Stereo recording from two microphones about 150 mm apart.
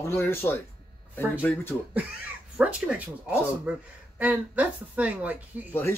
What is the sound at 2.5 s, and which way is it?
A woman's voice, 5° right (ahead or behind).